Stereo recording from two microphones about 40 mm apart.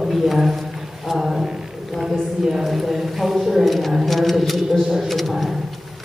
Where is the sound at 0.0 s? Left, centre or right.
Centre.